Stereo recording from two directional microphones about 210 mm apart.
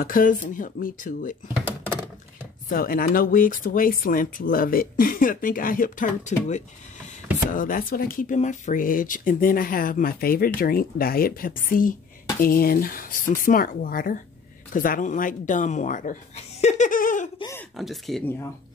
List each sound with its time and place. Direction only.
0.0 s speech: 40° left (ahead or behind)
2.7 s speech: 45° left (ahead or behind)
17.4 s a sound: 15° left (ahead or behind)
17.7 s speech: centre (ahead or behind)